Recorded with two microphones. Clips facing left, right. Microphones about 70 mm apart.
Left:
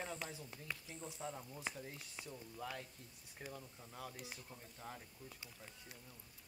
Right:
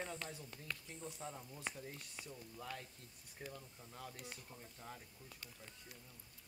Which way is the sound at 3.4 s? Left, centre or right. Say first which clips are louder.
Even; centre.